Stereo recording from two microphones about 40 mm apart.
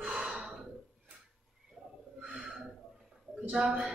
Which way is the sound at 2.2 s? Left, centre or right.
Centre.